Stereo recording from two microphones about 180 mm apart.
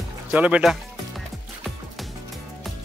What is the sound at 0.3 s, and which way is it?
Speech, 10° right (ahead or behind).